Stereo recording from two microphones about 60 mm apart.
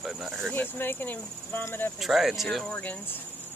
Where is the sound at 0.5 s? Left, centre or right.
Left.